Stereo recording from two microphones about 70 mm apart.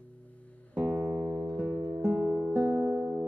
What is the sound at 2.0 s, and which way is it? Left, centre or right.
Guitar, centre.